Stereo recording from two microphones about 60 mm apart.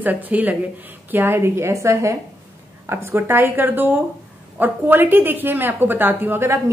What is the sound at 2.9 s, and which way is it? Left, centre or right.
Speech, right.